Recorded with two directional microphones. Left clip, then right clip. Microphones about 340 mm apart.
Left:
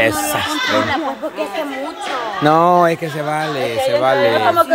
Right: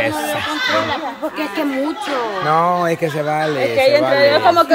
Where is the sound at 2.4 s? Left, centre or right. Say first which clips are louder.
Left 4 dB; left.